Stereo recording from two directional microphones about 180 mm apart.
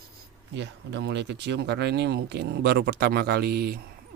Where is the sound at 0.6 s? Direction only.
75° right (ahead or behind); by 3.8 s 60° right (ahead or behind).